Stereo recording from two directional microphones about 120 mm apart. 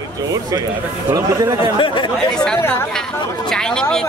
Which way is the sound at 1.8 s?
45° left (ahead or behind).